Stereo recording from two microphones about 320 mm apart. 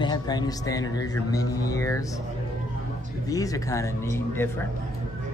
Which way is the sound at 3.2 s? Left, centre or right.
Centre.